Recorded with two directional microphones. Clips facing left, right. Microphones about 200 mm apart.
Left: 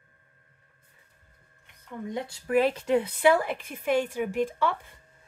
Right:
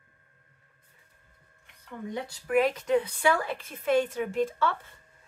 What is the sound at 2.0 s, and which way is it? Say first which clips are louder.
Speech: left 1 dB; 25° left (ahead or behind).